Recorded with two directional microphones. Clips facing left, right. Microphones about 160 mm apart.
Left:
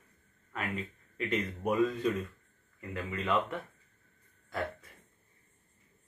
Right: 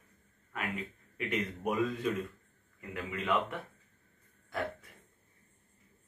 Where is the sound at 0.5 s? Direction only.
10° right (ahead or behind).